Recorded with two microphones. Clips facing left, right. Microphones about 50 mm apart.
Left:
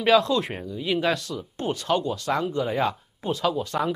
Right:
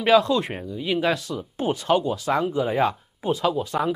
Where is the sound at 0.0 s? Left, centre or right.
Centre.